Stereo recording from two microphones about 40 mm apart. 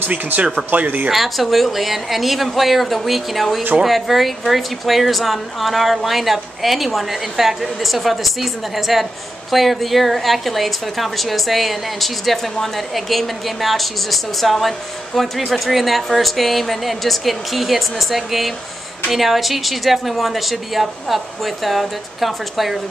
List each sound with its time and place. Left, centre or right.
0.1 s speech: right
0.7 s speech: right
1.1 s a woman's voice: centre